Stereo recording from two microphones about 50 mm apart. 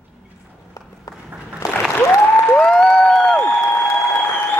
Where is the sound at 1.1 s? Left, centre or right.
Left.